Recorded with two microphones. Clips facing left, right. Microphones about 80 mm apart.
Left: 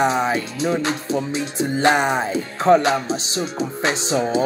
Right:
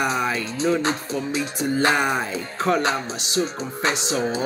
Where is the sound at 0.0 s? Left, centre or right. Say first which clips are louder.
Left 4 dB; left.